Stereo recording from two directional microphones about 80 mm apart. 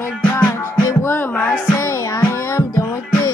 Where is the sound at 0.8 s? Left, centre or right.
Left.